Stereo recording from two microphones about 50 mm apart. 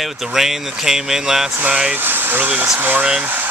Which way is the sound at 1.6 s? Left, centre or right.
Centre.